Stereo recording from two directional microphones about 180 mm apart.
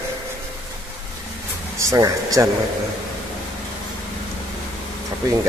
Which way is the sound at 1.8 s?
20° right (ahead or behind).